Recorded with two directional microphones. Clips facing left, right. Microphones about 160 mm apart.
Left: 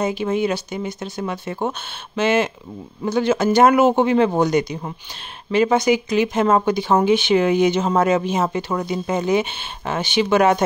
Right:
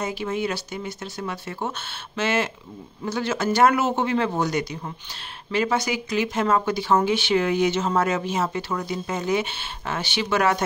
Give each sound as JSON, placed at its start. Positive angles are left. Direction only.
{"t": 0.0, "sound": "a man's voice", "side_deg": 20}